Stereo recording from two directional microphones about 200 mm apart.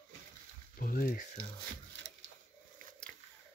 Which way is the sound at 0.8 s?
45° left (ahead or behind).